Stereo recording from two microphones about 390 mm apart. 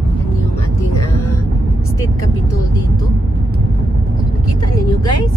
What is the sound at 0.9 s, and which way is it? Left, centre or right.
Vehicle, left.